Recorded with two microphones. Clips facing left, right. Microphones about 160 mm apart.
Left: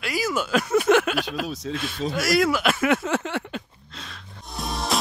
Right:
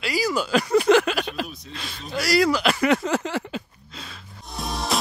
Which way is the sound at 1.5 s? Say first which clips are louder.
Left 10 dB; 90° left.